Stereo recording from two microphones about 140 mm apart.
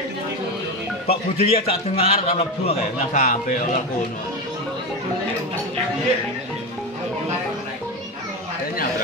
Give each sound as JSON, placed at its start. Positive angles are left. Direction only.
{"t": 1.0, "sound": "a man's voice", "side_deg": 45}
{"t": 3.1, "sound": "a man's voice", "side_deg": 65}